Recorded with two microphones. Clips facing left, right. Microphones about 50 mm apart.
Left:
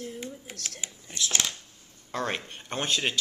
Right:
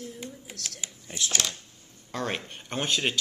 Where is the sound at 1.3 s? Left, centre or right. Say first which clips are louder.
Even; centre.